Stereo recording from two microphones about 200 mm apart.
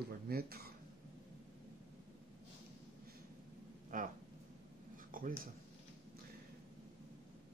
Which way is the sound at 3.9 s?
40° right (ahead or behind).